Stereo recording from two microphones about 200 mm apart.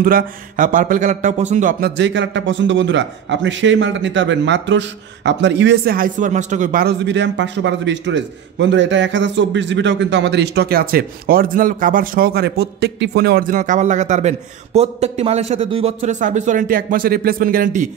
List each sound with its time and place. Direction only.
0.0 s speech: 45° right (ahead or behind)
2.0 s a man's voice: 60° right (ahead or behind); by 17.8 s 45° right (ahead or behind)